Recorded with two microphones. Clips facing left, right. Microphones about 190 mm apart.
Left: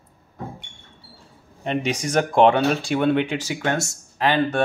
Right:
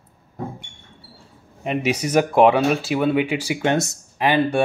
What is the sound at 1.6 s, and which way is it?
Speech, 5° right (ahead or behind).